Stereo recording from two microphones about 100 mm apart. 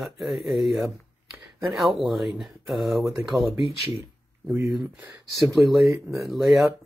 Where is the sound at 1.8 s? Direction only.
Centre (ahead or behind).